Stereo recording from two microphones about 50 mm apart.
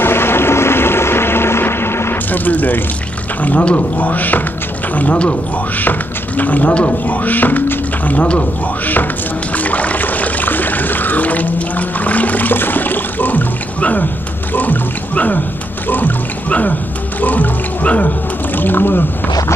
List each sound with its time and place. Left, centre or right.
0.0 s a sound: left
2.3 s speech: left
9.6 s trickle: left
14.5 s water: left
17.2 s music: left
18.6 s speech: left